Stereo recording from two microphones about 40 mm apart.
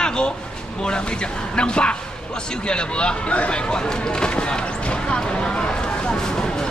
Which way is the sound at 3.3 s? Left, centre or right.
Left.